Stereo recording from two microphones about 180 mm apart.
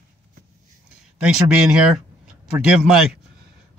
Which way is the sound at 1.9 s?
5° right (ahead or behind).